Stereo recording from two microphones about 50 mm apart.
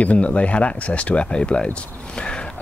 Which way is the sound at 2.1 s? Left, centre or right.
Centre.